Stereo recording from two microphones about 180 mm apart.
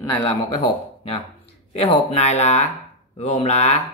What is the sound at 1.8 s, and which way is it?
Speech, 35° left (ahead or behind).